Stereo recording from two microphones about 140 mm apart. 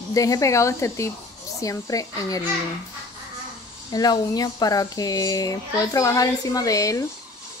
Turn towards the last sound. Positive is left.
turn(degrees=25)  # may be behind; listen again after turning